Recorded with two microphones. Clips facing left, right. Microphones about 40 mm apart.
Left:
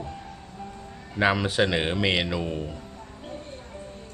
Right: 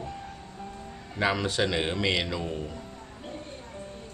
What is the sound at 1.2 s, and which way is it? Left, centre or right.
Speech, centre.